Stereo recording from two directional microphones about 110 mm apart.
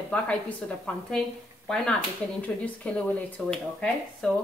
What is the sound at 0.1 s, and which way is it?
A woman's voice, 10° left (ahead or behind).